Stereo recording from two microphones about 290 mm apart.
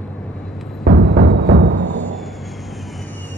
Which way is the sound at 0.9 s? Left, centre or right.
Right.